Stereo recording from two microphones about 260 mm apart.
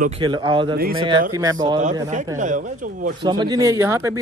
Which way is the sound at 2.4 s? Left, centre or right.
Right.